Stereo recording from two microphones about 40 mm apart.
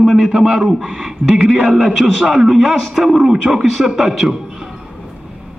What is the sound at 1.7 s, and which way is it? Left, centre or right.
Speech, centre.